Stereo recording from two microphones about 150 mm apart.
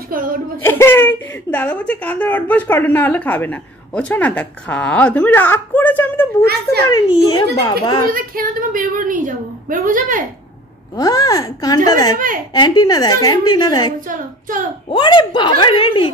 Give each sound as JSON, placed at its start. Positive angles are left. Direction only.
{"t": 0.1, "sound": "a sound", "side_deg": -70}
{"t": 0.6, "sound": "a woman's voice", "side_deg": 15}
{"t": 6.9, "sound": "a woman's voice", "side_deg": 25}
{"t": 8.1, "sound": "a woman's voice", "side_deg": -70}
{"t": 11.0, "sound": "a woman's voice", "side_deg": 25}